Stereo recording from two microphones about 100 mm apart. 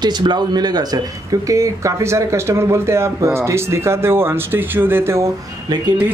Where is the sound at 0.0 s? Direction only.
45° right (ahead or behind).